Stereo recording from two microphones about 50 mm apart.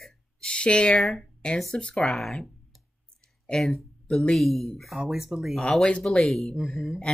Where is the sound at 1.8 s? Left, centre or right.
Centre.